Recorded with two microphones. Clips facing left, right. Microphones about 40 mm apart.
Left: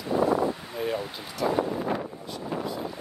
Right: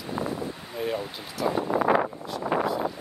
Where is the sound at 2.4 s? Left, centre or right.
Right.